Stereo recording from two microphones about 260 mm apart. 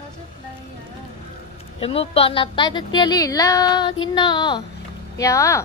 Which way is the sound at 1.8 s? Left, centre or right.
Left.